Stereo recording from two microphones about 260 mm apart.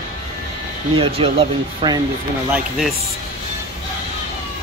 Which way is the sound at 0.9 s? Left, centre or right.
Right.